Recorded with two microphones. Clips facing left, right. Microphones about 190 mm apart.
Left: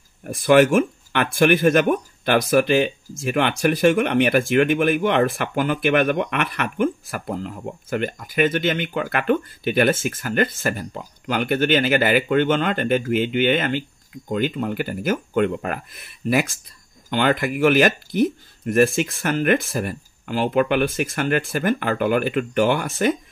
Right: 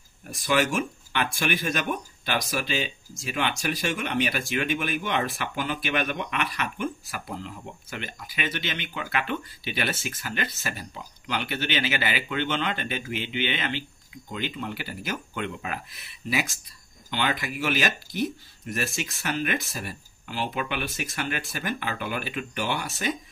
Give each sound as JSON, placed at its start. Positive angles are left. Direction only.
{"t": 0.2, "sound": "speech", "side_deg": 55}